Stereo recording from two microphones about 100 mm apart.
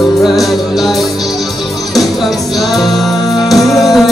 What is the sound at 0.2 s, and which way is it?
Music, centre (ahead or behind).